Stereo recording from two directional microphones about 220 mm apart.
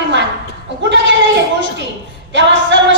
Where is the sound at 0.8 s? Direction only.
55° right (ahead or behind).